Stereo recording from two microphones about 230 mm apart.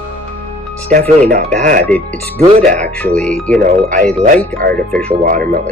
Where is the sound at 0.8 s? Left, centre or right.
Right.